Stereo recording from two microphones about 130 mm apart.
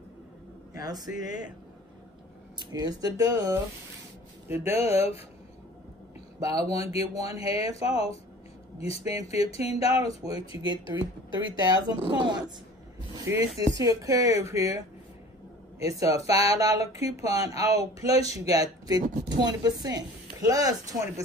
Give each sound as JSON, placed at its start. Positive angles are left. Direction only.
{"t": 0.8, "sound": "speech", "side_deg": -30}
{"t": 2.6, "sound": "a woman's voice", "side_deg": -30}
{"t": 6.5, "sound": "speech", "side_deg": 50}
{"t": 10.6, "sound": "speech", "side_deg": -35}
{"t": 13.3, "sound": "a woman's voice", "side_deg": -25}
{"t": 15.8, "sound": "a woman's voice", "side_deg": -25}